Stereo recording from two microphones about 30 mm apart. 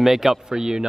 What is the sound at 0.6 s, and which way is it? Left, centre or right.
Speech, right.